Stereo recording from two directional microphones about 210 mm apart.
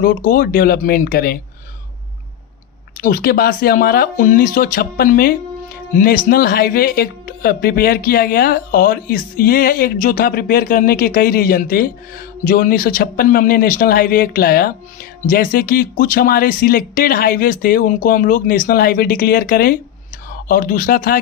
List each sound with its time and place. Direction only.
0.0 s speech: 40° left (ahead or behind)
3.0 s speech: 45° left (ahead or behind)